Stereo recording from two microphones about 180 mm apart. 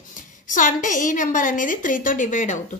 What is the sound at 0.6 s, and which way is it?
A woman's voice, 45° left (ahead or behind).